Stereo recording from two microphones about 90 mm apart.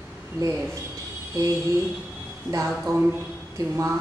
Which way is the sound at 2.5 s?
35° right (ahead or behind).